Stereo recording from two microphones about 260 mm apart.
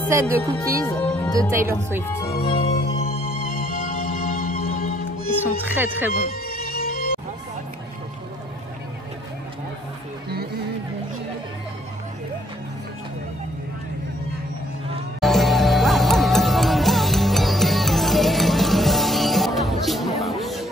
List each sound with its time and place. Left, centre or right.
0.1 s speech: centre
0.8 s music: centre
1.5 s speech: centre
2.0 s speech: centre
2.3 s music: left
3.5 s music: left
5.4 s speech: centre
6.1 s music: left
15.1 s music: centre